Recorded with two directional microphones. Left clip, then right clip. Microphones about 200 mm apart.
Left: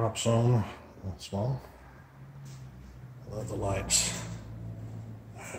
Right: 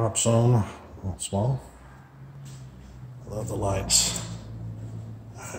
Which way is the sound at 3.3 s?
15° right (ahead or behind).